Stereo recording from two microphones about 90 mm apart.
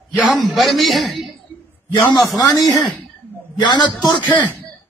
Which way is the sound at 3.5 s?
55° left (ahead or behind).